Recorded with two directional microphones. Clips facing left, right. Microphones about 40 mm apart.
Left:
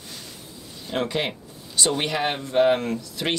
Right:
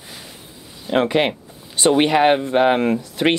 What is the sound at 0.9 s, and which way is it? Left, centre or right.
Speech, right.